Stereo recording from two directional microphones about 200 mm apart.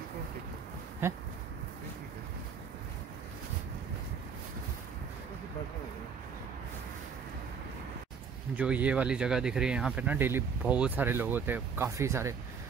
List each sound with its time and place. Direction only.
1.0 s speech: 10° right (ahead or behind)
8.5 s speech: 5° right (ahead or behind)